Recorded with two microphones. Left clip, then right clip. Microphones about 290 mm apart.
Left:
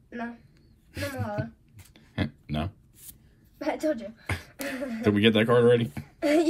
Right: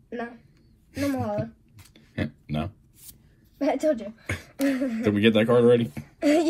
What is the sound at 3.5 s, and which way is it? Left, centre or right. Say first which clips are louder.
Speech: right 5 dB; centre.